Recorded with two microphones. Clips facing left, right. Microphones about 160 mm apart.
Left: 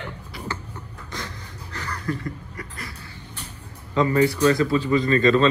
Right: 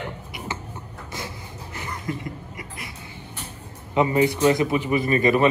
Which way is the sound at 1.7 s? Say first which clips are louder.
Left 2 dB; 20° right (ahead or behind).